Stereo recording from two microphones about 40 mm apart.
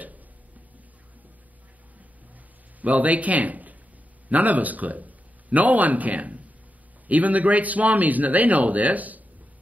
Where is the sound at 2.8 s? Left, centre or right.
Right.